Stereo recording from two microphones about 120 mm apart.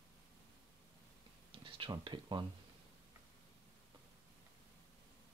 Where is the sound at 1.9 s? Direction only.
40° right (ahead or behind).